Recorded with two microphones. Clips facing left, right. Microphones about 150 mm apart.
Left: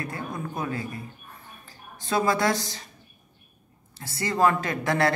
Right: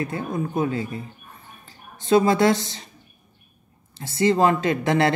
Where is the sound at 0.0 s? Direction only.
25° right (ahead or behind).